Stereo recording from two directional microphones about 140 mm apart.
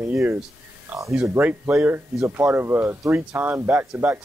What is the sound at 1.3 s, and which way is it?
Speech, 15° right (ahead or behind).